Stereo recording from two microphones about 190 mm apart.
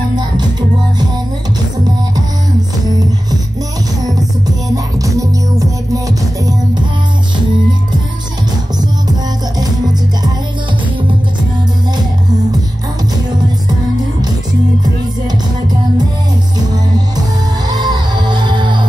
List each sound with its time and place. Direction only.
0.1 s music: 20° right (ahead or behind)
4.7 s music: 15° right (ahead or behind)
17.6 s music: 20° right (ahead or behind)